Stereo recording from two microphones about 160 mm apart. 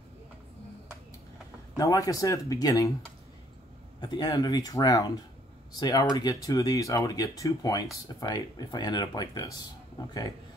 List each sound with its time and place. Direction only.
1.8 s speech: 20° left (ahead or behind)
4.0 s speech: 25° left (ahead or behind)